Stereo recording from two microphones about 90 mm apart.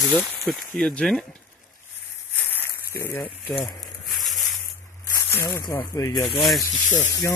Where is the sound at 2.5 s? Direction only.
25° left (ahead or behind).